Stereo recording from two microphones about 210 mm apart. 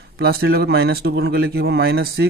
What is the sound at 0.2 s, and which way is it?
Speech, 50° right (ahead or behind).